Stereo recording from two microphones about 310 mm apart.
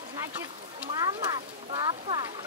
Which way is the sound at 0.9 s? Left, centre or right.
Centre.